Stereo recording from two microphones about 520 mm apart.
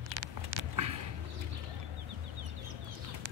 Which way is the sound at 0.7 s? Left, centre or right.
Right.